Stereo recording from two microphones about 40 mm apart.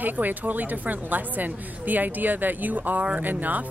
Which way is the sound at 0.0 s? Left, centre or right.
Right.